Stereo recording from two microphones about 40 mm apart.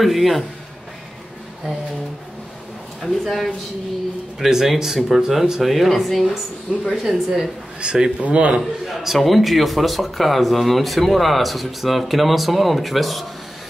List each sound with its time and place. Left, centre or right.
0.0 s a man's voice: centre
3.0 s speech: centre
4.4 s speech: centre
6.9 s speech: centre
7.8 s a man's voice: right
8.2 s a man's voice: right
8.5 s a man's voice: centre